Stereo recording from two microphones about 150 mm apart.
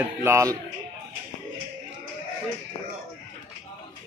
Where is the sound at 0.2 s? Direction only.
20° right (ahead or behind).